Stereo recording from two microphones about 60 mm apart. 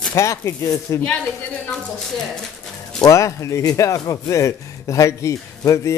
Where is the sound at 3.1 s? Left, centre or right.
Left.